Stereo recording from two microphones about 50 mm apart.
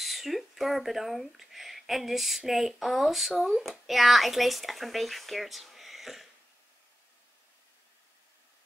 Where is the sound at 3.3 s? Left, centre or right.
Centre.